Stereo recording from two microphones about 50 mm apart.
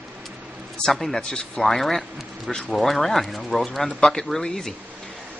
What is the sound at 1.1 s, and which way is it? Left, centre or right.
Speech, centre.